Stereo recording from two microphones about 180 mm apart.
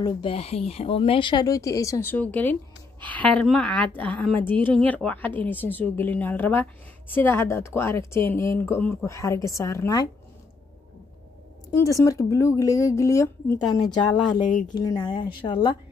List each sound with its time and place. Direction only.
0.0 s a woman's voice: 30° left (ahead or behind)
11.7 s a woman's voice: 15° left (ahead or behind)
14.7 s speech: 20° left (ahead or behind)